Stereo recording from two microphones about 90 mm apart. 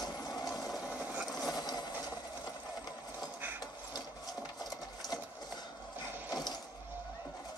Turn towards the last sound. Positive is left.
turn(degrees=50)  # may be behind; listen again after turning